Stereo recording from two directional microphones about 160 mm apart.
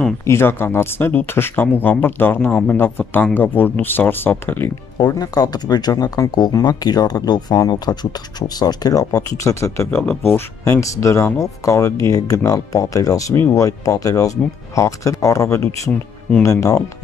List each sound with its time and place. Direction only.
0.3 s speech: 15° left (ahead or behind)
4.9 s speech: 25° left (ahead or behind)